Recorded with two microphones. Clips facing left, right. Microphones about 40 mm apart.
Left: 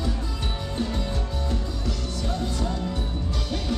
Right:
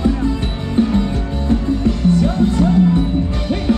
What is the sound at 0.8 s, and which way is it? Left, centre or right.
Music, right.